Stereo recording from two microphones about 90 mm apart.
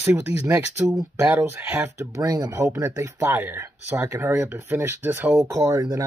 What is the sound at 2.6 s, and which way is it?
Speech, 25° right (ahead or behind).